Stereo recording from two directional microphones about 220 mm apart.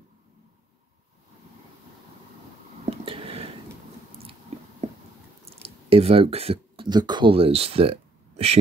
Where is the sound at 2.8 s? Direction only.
25° right (ahead or behind).